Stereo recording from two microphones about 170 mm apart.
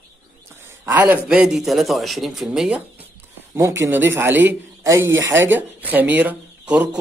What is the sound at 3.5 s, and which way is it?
Speech, 15° right (ahead or behind).